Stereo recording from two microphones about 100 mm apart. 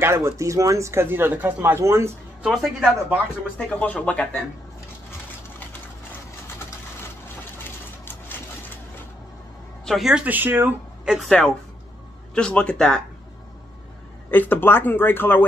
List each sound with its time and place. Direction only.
0.0 s speech: 25° right (ahead or behind)
2.4 s speech: 5° right (ahead or behind)
3.5 s speech: 15° left (ahead or behind)
8.0 s vehicle: 20° left (ahead or behind)
9.8 s speech: centre (ahead or behind)
10.2 s speech: 20° right (ahead or behind)
11.2 s speech: 5° left (ahead or behind)
14.3 s speech: 20° left (ahead or behind)